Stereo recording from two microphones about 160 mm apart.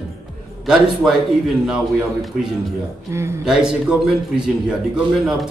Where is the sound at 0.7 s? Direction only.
5° right (ahead or behind).